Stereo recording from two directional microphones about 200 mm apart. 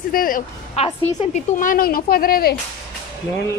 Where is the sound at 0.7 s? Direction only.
30° left (ahead or behind); by 2.5 s 50° left (ahead or behind).